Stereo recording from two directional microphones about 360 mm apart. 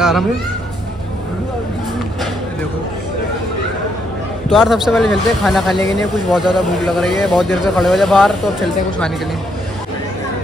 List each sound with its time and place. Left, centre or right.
4.5 s speech: centre